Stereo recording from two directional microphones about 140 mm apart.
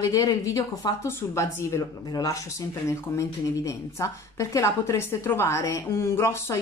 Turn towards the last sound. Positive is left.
turn(degrees=20)  # may be behind; listen again after turning